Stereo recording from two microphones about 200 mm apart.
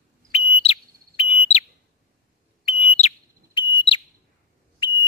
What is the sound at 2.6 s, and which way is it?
Bird, 30° left (ahead or behind).